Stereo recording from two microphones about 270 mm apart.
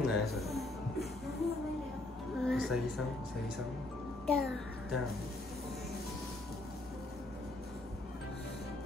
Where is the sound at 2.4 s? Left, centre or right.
Centre.